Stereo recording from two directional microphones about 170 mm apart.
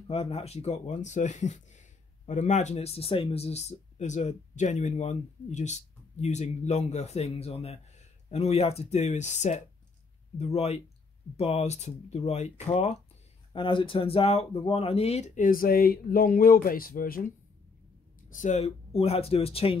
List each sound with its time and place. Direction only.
0.1 s speech: 35° left (ahead or behind); by 17.3 s 55° left (ahead or behind)
18.3 s speech: 45° left (ahead or behind)